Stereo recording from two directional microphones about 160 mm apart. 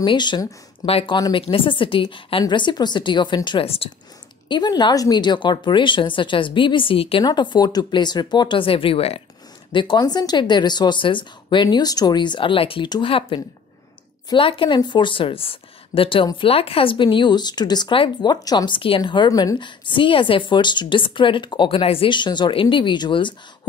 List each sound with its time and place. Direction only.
0.0 s speech: 30° left (ahead or behind)